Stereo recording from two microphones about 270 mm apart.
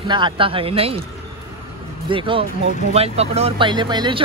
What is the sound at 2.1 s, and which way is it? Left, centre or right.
Speech, centre.